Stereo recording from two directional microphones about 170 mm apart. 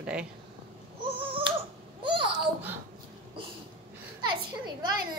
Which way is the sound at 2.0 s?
30° right (ahead or behind).